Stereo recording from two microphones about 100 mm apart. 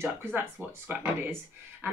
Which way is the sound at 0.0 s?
25° right (ahead or behind).